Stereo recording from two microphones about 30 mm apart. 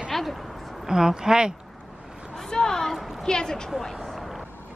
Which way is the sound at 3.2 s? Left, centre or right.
Left.